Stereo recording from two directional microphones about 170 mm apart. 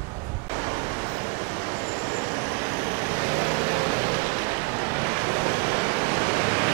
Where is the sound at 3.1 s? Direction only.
15° right (ahead or behind).